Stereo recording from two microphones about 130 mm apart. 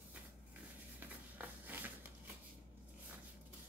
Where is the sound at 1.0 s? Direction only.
15° right (ahead or behind).